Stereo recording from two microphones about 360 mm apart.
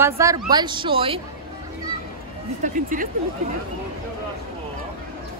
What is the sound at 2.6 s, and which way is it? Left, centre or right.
Speech, right.